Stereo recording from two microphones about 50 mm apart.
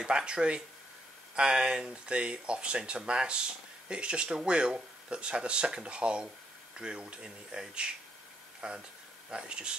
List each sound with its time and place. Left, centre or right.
0.0 s speech: centre